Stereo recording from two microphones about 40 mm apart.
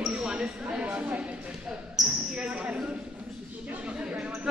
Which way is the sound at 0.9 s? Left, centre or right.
Right.